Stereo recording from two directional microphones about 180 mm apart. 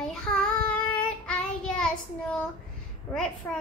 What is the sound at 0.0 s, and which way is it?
Child singing, 5° left (ahead or behind).